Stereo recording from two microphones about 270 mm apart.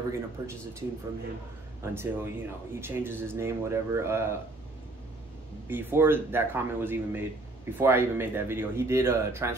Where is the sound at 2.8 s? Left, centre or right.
Centre.